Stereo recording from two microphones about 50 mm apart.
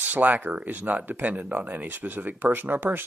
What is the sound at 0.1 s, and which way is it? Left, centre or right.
Speech, right.